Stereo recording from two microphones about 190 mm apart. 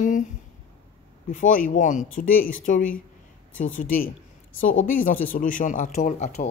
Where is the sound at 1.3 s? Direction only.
45° left (ahead or behind).